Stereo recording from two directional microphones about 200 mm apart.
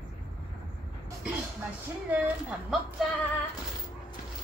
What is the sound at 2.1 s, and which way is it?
Speech, 5° right (ahead or behind).